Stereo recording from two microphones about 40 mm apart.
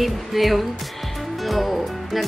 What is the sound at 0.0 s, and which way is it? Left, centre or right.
Speech, centre.